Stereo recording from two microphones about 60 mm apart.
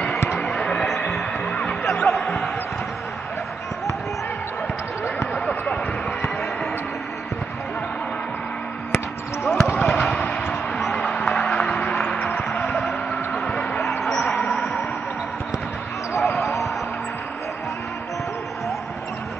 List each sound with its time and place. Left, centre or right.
0.4 s a sound: centre
1.5 s music: centre
2.0 s basketball bounce: centre
8.9 s basketball bounce: left
9.8 s basketball bounce: centre
10.8 s music: centre
12.1 s music: left
12.8 s a sound: centre
16.2 s basketball bounce: centre